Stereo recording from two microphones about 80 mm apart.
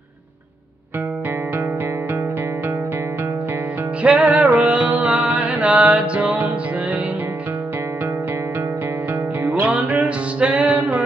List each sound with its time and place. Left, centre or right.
4.0 s music: centre
9.4 s music: centre